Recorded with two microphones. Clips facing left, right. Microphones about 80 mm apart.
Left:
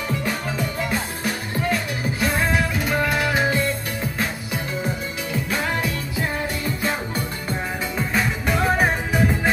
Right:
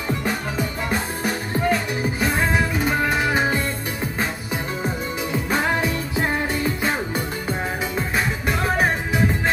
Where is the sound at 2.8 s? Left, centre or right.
Right.